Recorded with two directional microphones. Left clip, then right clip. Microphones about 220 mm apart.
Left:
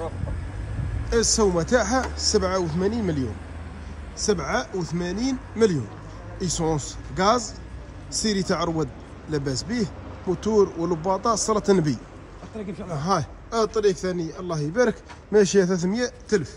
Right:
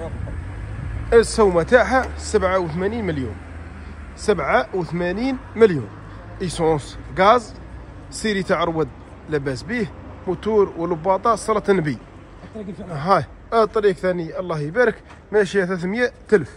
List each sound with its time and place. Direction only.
1.1 s a man's voice: 15° left (ahead or behind)
4.3 s a man's voice: 15° left (ahead or behind)
12.5 s speech: centre (ahead or behind)
12.9 s a man's voice: 15° left (ahead or behind)